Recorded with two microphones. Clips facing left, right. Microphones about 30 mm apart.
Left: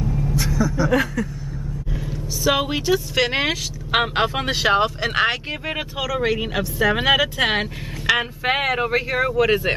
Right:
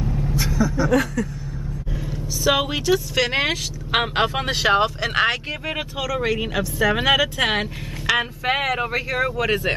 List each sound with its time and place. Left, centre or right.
0.0 s vehicle: centre
0.4 s vehicle: centre
0.8 s speech: centre
2.4 s speech: centre